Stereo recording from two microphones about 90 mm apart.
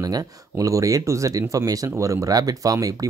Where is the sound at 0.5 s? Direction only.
40° right (ahead or behind).